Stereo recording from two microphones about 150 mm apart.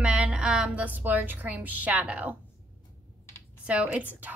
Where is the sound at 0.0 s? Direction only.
5° right (ahead or behind).